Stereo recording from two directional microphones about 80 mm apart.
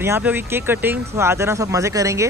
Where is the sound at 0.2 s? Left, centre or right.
Right.